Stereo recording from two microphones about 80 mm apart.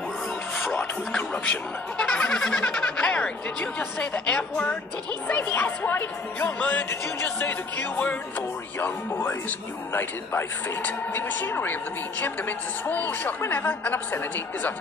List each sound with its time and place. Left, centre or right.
0.6 s a sound: centre
2.0 s a woman's voice: centre; by 7.5 s left
7.9 s speech: centre
8.7 s a woman's voice: left